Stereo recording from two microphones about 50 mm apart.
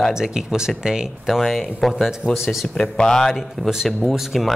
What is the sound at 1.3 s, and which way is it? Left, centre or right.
Speech, centre.